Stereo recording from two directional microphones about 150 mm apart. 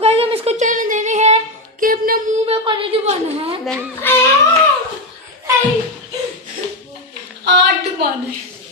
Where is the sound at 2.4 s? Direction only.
40° right (ahead or behind).